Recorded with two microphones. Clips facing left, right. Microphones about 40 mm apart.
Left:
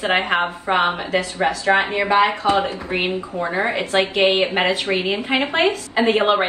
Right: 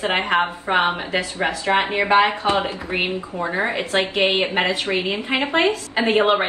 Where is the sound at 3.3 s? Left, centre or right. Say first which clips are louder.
Left 1 dB; centre.